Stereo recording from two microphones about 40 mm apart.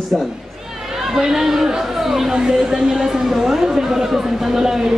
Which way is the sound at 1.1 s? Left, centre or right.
Centre.